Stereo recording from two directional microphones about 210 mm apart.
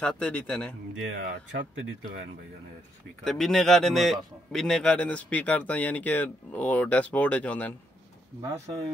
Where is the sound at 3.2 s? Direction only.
Centre (ahead or behind).